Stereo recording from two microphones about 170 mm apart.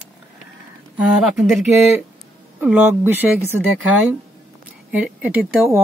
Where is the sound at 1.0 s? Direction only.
Centre (ahead or behind).